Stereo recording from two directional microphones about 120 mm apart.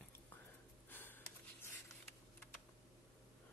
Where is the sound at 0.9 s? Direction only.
15° left (ahead or behind).